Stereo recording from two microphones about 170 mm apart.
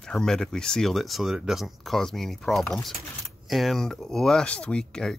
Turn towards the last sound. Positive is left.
turn(degrees=5)  # may be behind; listen again after turning